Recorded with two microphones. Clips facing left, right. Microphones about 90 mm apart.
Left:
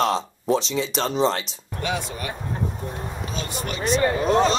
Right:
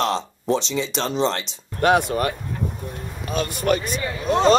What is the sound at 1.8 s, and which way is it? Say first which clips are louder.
Speech: right 10 dB; 55° right (ahead or behind).